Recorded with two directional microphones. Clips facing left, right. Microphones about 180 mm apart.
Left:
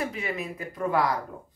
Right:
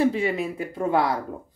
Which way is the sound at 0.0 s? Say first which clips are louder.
Right 9 dB; 30° right (ahead or behind).